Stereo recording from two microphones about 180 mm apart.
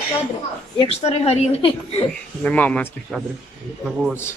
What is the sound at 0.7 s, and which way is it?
A woman's voice, 35° left (ahead or behind).